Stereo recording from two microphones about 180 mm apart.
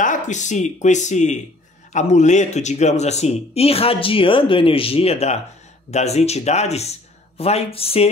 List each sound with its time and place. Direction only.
0.0 s speech: 45° left (ahead or behind)